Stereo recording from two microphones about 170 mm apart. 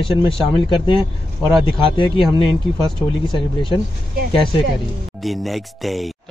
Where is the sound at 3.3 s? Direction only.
30° left (ahead or behind).